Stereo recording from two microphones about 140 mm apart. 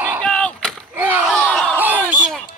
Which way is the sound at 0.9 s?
10° right (ahead or behind).